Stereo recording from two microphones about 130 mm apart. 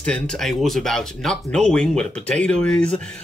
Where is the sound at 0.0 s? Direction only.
5° left (ahead or behind).